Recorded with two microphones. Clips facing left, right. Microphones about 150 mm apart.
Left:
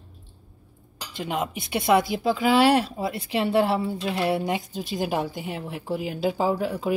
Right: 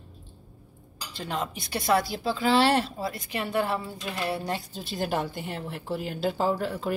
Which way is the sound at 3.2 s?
30° left (ahead or behind).